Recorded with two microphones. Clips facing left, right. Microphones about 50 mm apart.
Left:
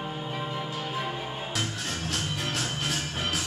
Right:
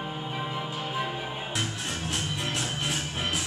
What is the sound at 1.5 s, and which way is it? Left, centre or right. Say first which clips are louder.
Music: even; right.